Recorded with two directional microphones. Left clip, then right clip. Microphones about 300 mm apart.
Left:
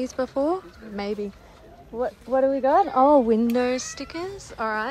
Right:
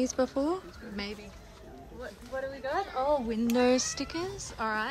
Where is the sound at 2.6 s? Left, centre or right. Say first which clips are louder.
Left 10 dB; right.